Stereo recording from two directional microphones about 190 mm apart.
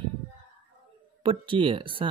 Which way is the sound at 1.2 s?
25° right (ahead or behind).